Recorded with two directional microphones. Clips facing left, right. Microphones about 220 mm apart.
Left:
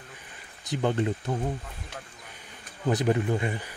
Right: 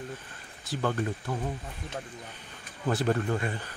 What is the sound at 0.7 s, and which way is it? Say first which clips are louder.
Speech: left 4 dB; 20° left (ahead or behind).